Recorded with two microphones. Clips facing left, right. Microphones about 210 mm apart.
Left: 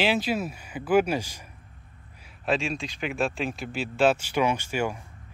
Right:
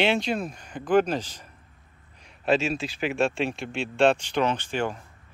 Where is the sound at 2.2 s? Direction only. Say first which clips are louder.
Right 3 dB; centre (ahead or behind).